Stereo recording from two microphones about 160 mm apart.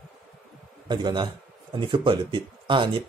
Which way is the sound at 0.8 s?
30° right (ahead or behind).